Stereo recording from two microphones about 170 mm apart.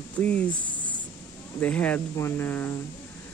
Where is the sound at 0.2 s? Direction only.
10° left (ahead or behind).